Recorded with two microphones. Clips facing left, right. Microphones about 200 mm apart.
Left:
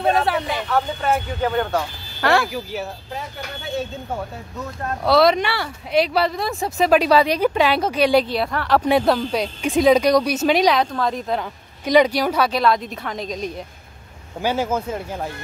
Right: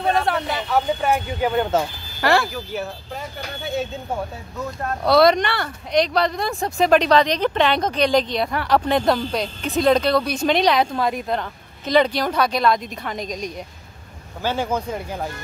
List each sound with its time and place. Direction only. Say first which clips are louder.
0.1 s speech: left 1 dB; 5° left (ahead or behind)
0.7 s speech: right 2 dB; 10° right (ahead or behind); by 2.9 s 5° left (ahead or behind)
5.0 s speech: right 1 dB; centre (ahead or behind)
10.8 s speech: right 1 dB; 10° right (ahead or behind)
11.3 s speech: left 1 dB; 10° left (ahead or behind)
14.4 s speech: left 2 dB; 5° left (ahead or behind)